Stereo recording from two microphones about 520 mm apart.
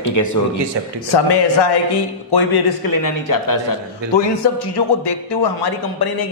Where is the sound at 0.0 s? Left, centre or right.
Left.